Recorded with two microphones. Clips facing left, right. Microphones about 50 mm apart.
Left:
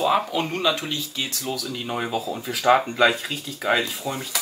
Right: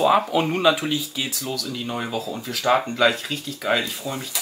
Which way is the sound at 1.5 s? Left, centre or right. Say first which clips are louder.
Even; centre.